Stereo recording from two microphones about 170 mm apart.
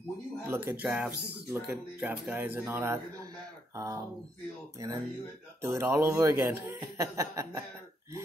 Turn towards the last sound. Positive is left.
turn(degrees=-20)  # may be behind; listen again after turning